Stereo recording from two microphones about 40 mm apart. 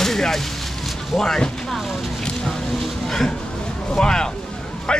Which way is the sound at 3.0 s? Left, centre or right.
Centre.